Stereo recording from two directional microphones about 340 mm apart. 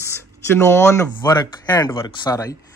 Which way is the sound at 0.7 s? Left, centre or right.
Centre.